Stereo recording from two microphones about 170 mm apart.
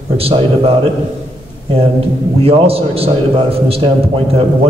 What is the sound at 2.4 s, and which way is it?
Speech, 35° right (ahead or behind).